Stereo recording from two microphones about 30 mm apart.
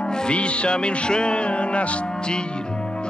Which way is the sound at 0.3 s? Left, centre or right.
Left.